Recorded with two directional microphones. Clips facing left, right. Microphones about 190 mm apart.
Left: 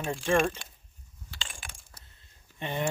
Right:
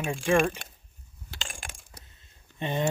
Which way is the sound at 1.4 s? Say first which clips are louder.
Right 4 dB; 45° right (ahead or behind).